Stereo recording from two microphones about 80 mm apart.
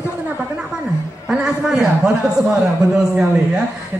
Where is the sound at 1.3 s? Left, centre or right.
Centre.